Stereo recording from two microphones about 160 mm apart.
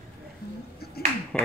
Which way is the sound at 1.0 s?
75° left (ahead or behind).